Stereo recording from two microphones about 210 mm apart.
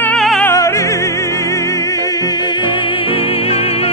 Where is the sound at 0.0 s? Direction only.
5° left (ahead or behind).